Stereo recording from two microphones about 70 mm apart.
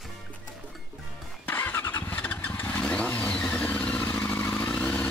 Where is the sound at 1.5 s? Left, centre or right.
Left.